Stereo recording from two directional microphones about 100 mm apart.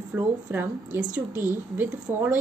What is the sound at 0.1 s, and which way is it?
A woman's voice, 20° right (ahead or behind).